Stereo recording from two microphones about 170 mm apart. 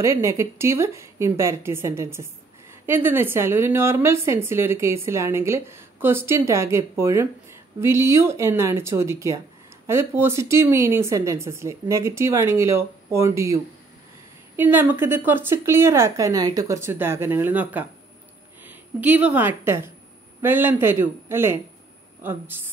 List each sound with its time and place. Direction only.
0.0 s a woman's voice: 15° right (ahead or behind)
14.6 s a woman's voice: 10° right (ahead or behind)